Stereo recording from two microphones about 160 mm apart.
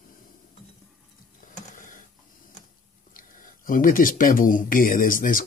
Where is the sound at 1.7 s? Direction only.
55° left (ahead or behind).